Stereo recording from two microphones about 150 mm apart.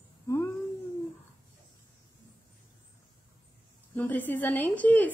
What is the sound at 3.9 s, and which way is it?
A woman's voice, 10° left (ahead or behind).